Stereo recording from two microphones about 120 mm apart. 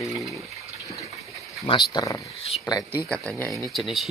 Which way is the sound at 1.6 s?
40° left (ahead or behind).